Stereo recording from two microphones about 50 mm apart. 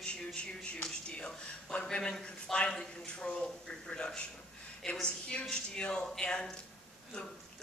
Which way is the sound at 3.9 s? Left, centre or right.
Left.